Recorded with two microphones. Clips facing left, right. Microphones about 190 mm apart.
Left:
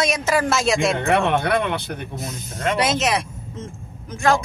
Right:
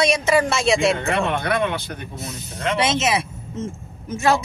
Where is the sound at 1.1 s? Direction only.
60° left (ahead or behind).